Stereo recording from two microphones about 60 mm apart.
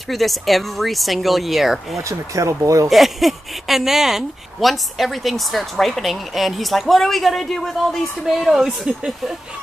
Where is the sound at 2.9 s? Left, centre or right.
Centre.